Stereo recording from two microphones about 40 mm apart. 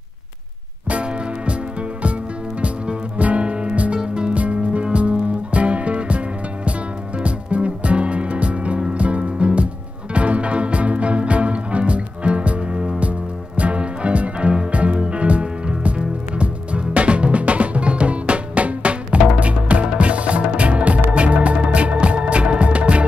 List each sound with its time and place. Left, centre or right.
0.8 s music: right
4.0 s music: right
4.3 s music: right
16.3 s drum: right